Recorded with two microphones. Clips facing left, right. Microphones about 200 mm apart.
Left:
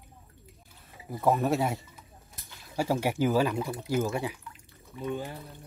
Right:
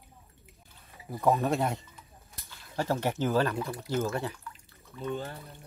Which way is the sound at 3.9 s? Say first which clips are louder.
Left 2 dB; 10° left (ahead or behind).